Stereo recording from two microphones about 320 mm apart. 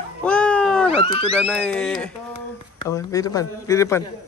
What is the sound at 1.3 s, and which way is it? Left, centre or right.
A man's voice, centre.